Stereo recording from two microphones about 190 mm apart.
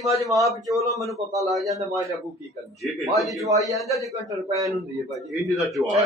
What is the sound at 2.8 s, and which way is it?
Speech, centre (ahead or behind).